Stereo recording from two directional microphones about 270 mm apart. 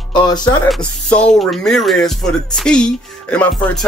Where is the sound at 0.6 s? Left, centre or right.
Centre.